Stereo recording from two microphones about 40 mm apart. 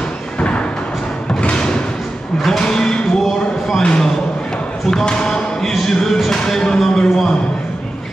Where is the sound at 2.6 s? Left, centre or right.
Centre.